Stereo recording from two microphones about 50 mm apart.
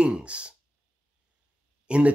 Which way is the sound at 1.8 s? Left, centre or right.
Right.